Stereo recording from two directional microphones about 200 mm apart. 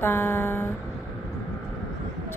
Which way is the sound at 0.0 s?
10° left (ahead or behind).